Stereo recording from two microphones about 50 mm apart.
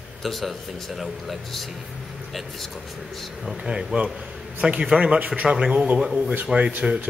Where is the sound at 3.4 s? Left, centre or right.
Centre.